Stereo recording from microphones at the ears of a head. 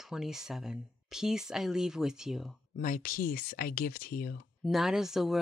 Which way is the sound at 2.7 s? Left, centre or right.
Left.